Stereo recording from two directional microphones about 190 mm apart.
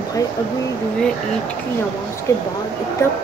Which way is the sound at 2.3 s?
15° left (ahead or behind).